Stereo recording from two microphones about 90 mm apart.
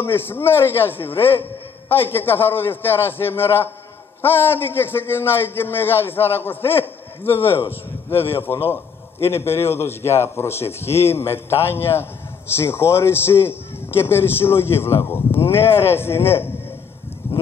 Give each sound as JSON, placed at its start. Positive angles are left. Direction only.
{"t": 0.0, "sound": "a man's voice", "side_deg": 25}